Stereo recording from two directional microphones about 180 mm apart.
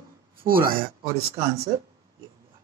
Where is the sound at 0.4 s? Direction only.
55° right (ahead or behind).